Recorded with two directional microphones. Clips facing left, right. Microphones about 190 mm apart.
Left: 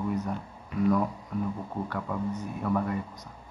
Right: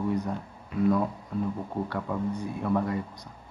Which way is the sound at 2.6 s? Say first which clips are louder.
Right 1 dB; 30° right (ahead or behind).